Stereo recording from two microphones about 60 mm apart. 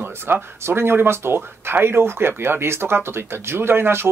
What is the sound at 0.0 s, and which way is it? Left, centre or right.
Speech, right.